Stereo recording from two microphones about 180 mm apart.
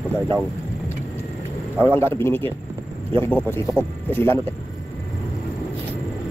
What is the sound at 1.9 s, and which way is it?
Speech, 15° left (ahead or behind).